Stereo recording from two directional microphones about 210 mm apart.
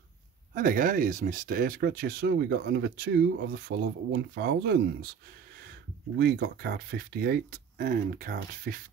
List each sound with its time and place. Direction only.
0.6 s speech: 40° right (ahead or behind)
6.1 s speech: 45° right (ahead or behind)